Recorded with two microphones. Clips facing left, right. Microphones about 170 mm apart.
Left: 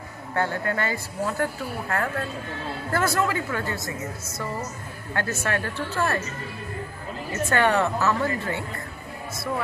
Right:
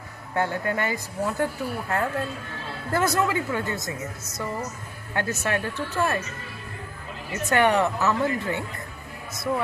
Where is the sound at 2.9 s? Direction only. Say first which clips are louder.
Right 1 dB; 20° right (ahead or behind).